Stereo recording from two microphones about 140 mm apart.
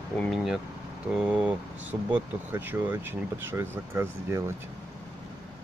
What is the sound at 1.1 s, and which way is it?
Speech, 10° right (ahead or behind).